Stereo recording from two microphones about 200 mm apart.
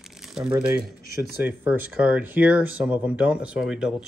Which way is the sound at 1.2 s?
10° right (ahead or behind).